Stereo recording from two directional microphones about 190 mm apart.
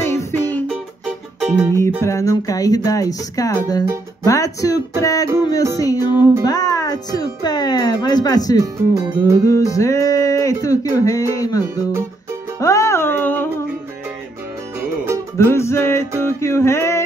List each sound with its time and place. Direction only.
0.0 s music: 15° left (ahead or behind)
1.4 s music: 5° right (ahead or behind)
1.8 s speech: 15° left (ahead or behind)
4.2 s music: 15° left (ahead or behind)
5.5 s speech: 20° left (ahead or behind)
5.9 s speech: 10° right (ahead or behind)
6.4 s speech: 20° left (ahead or behind)
8.5 s speech: 15° right (ahead or behind)
9.5 s music: 15° left (ahead or behind)
15.3 s music: 15° left (ahead or behind)